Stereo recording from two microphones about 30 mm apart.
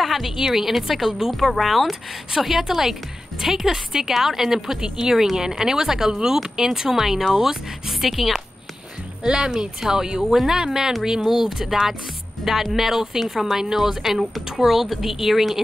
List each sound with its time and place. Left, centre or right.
0.0 s a woman's voice: centre
1.3 s speech: centre
9.2 s speech: right
10.2 s speech: centre
10.5 s speech: right
11.1 s speech: centre